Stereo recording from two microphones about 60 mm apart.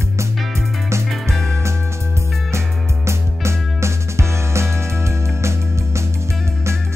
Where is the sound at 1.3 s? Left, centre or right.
Centre.